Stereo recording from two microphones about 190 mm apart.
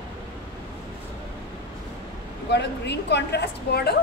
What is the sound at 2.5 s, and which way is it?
A woman's voice, 60° left (ahead or behind).